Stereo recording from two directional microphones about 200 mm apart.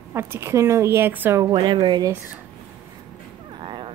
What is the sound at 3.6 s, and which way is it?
Dog, 25° right (ahead or behind).